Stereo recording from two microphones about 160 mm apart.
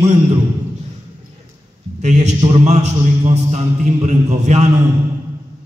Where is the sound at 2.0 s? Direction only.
45° right (ahead or behind).